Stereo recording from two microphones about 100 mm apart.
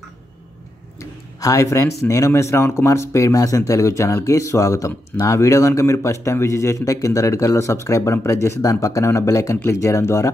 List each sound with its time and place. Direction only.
0.9 s a man's voice: 30° left (ahead or behind)